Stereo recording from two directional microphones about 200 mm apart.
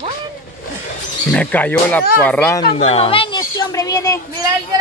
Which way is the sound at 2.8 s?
30° left (ahead or behind).